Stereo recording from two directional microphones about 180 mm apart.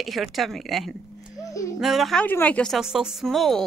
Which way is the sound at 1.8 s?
Centre (ahead or behind).